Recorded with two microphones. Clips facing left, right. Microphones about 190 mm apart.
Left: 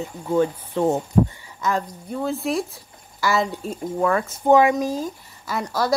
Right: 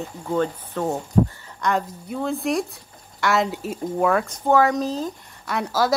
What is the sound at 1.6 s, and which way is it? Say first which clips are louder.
A woman's voice: right 1 dB; centre (ahead or behind).